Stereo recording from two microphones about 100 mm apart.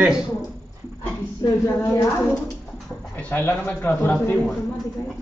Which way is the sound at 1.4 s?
35° left (ahead or behind).